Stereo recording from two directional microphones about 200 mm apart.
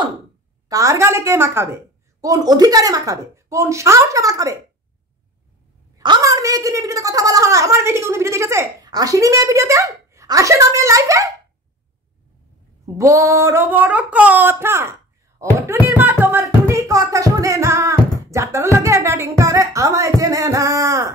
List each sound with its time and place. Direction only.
0.7 s a woman's voice: 15° right (ahead or behind)
5.9 s a woman's voice: 20° right (ahead or behind)
12.8 s a sound: 15° right (ahead or behind)